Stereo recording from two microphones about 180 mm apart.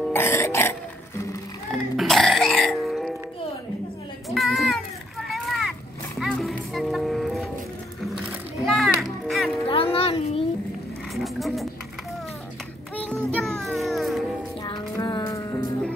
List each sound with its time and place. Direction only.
0.1 s music: 15° left (ahead or behind)
1.7 s music: centre (ahead or behind)
4.3 s a sound: centre (ahead or behind)
5.3 s music: centre (ahead or behind)
8.6 s music: centre (ahead or behind)
9.7 s a sound: 30° left (ahead or behind)
11.1 s a sound: centre (ahead or behind)
12.9 s music: 10° left (ahead or behind)
14.6 s music: 25° left (ahead or behind)